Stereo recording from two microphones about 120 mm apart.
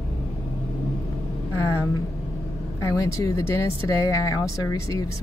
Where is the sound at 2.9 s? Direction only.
25° left (ahead or behind).